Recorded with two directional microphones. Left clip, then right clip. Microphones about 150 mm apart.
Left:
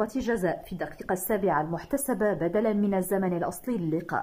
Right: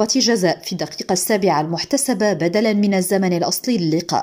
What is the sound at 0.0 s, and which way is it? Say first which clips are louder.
A woman's voice: right 11 dB; 30° right (ahead or behind).